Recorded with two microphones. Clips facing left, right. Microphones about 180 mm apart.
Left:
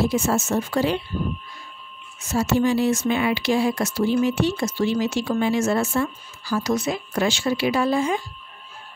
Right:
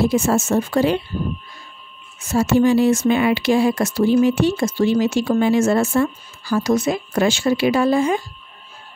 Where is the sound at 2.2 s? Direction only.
50° right (ahead or behind).